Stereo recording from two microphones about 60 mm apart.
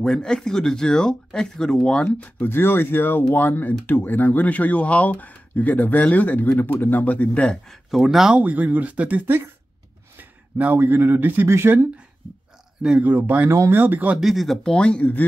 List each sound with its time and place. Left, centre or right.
0.0 s speech: centre
2.4 s speech: left
7.9 s speech: centre
8.4 s speech: right
10.6 s a man's voice: right
13.0 s speech: right
14.1 s speech: centre
14.6 s speech: centre